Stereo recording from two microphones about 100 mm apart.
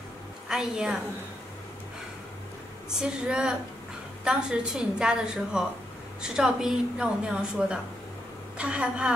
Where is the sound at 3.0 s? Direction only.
5° right (ahead or behind).